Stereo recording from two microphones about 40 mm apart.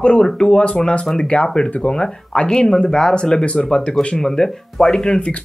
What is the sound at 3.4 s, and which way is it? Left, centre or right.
Speech, left.